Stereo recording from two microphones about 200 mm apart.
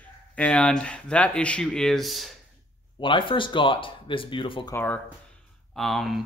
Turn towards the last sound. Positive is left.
turn(degrees=0)  # may be behind; listen again after turning